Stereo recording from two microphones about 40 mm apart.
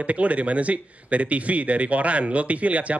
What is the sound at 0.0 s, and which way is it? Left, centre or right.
A man's voice, right.